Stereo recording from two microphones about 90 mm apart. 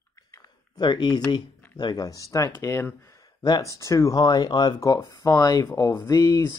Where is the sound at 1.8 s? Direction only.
50° left (ahead or behind).